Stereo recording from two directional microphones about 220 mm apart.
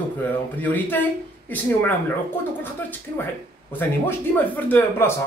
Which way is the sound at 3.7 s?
10° left (ahead or behind).